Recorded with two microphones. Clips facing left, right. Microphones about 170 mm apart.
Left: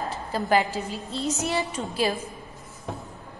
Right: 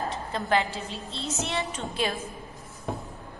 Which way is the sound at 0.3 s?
10° left (ahead or behind).